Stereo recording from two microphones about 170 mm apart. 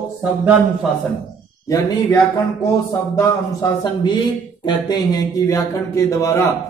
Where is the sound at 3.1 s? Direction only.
20° left (ahead or behind).